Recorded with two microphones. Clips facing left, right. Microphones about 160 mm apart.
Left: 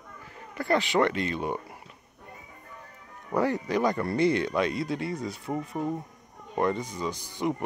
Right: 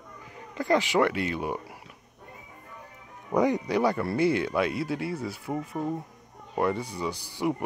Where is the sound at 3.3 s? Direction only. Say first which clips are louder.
Right 2 dB; 15° right (ahead or behind).